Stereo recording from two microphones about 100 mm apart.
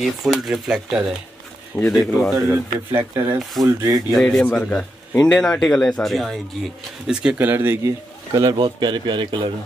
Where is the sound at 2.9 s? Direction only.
20° right (ahead or behind).